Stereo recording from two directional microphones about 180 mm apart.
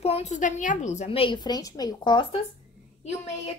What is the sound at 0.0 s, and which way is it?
A woman's voice, 35° left (ahead or behind).